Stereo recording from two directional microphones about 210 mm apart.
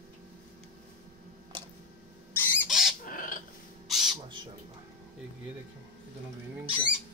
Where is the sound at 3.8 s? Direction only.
Centre (ahead or behind).